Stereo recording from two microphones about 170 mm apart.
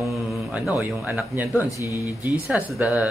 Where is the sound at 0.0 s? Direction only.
Centre (ahead or behind).